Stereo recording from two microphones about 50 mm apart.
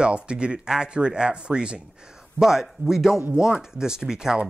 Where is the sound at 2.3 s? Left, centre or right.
Centre.